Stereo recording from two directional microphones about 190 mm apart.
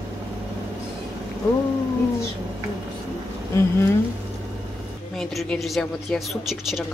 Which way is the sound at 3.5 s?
15° left (ahead or behind).